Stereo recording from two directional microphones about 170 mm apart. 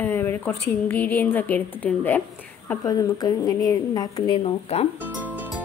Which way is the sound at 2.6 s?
20° left (ahead or behind).